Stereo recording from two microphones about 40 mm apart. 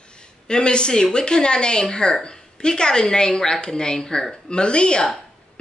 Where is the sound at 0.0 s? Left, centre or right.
Left.